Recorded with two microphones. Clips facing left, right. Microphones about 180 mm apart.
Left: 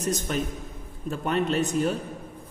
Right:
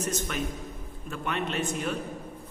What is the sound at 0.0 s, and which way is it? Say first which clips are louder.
A woman's voice: left 3 dB; 35° left (ahead or behind).